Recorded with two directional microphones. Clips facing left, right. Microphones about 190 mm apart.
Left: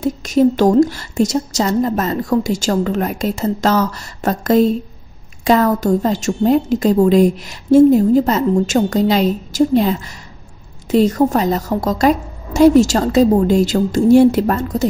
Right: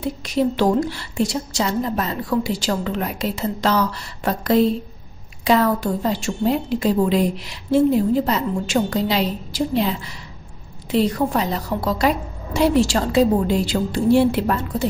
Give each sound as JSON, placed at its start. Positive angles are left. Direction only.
{"t": 0.0, "sound": "a woman's voice", "side_deg": 45}